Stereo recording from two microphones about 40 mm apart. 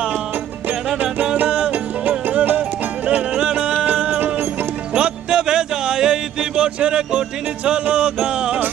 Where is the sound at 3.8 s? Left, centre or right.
Right.